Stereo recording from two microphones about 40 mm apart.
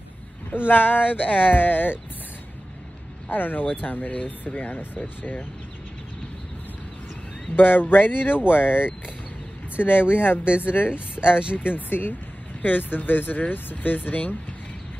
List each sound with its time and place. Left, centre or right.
0.5 s speech: left
3.3 s speech: left
7.5 s speech: left
10.9 s speech: right
11.5 s speech: left